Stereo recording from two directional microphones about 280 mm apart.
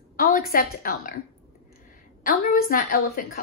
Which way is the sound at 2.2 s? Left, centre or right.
Left.